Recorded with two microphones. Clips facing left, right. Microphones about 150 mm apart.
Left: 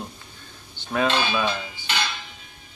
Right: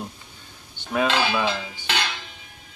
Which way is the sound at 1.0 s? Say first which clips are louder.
Right 1 dB; 90° right.